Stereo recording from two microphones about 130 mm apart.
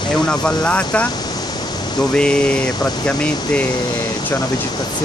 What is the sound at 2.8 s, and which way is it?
Speech, 10° left (ahead or behind).